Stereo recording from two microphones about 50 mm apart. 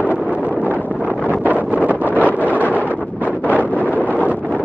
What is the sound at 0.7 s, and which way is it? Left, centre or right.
Wind noise, right.